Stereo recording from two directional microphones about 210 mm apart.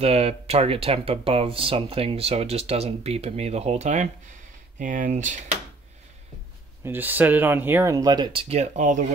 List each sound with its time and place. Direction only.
0.0 s speech: 30° right (ahead or behind)
6.8 s speech: 10° right (ahead or behind); by 9.0 s 35° right (ahead or behind)